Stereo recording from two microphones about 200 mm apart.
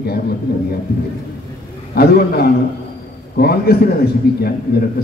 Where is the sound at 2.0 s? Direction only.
50° left (ahead or behind).